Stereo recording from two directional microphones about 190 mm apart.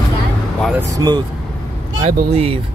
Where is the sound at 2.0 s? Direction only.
30° right (ahead or behind).